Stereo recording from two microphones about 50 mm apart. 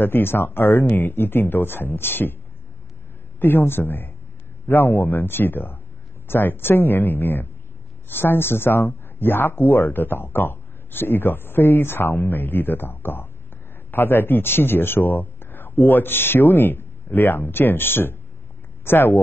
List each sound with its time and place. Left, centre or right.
0.0 s speech: left
3.3 s a man's voice: left